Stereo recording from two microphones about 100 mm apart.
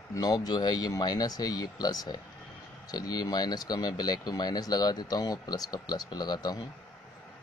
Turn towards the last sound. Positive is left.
turn(degrees=45)  # may be behind; listen again after turning